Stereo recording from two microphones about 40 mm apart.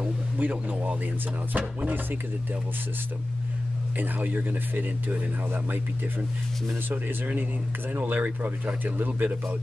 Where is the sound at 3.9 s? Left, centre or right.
Right.